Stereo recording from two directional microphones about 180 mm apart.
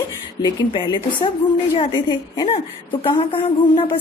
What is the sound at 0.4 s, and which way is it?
A woman's voice, 25° left (ahead or behind).